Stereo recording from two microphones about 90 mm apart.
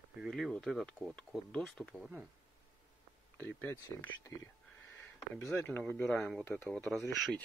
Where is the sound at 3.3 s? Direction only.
25° left (ahead or behind).